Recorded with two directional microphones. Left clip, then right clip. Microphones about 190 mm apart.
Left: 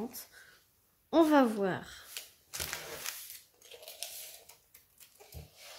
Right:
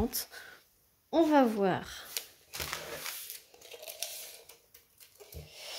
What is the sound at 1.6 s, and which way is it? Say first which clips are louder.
Speech: right 4 dB; 15° right (ahead or behind).